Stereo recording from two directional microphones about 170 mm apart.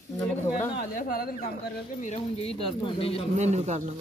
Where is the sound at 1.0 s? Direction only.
60° left (ahead or behind).